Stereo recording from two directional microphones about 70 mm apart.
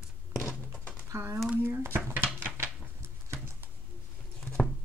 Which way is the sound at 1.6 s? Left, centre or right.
Right.